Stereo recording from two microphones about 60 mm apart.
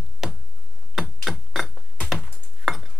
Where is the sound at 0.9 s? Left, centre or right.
Centre.